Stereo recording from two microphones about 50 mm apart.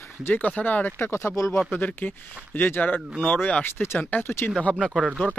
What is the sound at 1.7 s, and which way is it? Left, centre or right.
Speech, left.